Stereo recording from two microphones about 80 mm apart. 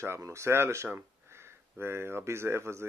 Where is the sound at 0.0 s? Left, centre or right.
Right.